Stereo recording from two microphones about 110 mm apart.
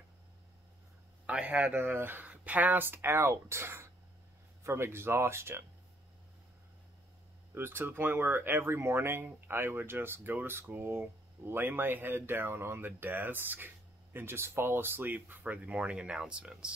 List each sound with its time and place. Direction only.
1.2 s speech: 15° right (ahead or behind)
7.5 s speech: 20° right (ahead or behind)